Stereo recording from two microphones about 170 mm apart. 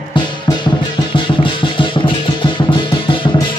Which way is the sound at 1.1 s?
30° left (ahead or behind).